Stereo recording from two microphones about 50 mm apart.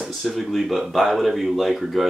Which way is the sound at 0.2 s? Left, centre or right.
Centre.